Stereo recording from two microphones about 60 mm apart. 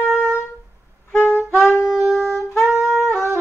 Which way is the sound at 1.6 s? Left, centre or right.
Left.